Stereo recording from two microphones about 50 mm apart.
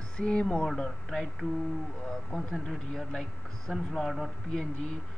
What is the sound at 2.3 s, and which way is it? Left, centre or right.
Speech, centre.